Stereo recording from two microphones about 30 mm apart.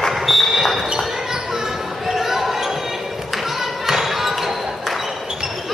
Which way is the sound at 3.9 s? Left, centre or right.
Centre.